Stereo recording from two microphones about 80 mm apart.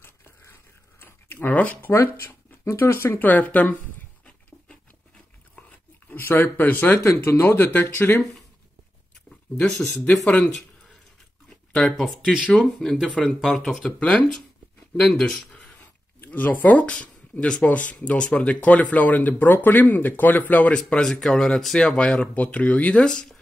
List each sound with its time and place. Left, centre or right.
0.0 s a sound: left
2.1 s speech: left
3.3 s speech: left
5.6 s a sound: left
7.2 s speech: left
7.7 s speech: left
8.2 s speech: centre
9.6 s speech: centre
11.7 s speech: centre
13.0 s speech: centre
16.2 s speech: left